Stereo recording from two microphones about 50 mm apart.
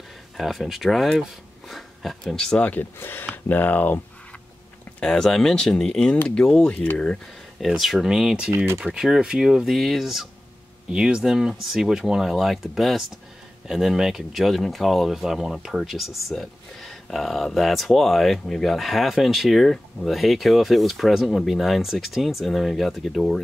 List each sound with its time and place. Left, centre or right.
0.4 s speech: centre
1.7 s a sound: centre
2.6 s speech: left
3.0 s speech: left
5.0 s speech: centre
6.7 s speech: left
7.6 s speech: centre
10.9 s speech: centre